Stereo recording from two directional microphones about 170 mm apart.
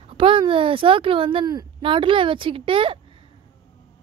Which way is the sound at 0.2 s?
30° right (ahead or behind).